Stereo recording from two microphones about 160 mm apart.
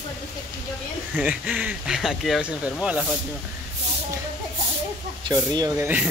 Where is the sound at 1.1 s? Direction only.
5° right (ahead or behind).